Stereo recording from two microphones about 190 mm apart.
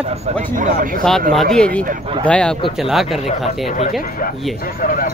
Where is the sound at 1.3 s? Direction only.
Centre (ahead or behind).